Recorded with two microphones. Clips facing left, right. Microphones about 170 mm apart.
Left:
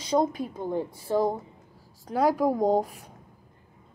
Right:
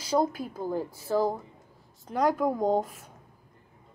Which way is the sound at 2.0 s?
5° left (ahead or behind).